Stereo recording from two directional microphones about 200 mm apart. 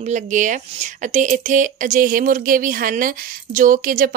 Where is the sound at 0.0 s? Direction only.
40° right (ahead or behind).